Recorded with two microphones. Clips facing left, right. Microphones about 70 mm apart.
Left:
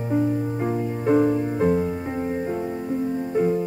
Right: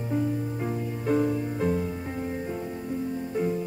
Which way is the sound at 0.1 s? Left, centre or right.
Left.